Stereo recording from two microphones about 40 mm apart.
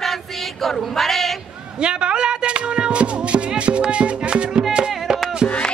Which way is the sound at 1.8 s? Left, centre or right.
Right.